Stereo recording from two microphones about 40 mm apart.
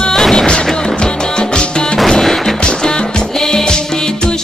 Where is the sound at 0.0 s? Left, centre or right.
Centre.